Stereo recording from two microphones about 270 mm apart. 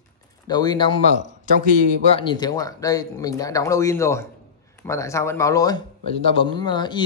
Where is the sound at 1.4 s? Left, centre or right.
Right.